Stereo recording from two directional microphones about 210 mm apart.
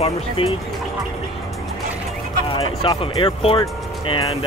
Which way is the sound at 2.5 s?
25° left (ahead or behind).